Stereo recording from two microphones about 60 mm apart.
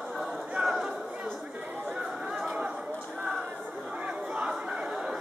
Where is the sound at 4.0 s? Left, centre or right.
Centre.